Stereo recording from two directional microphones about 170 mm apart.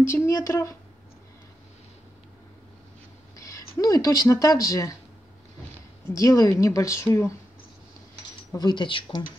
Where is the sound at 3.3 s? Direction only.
20° left (ahead or behind).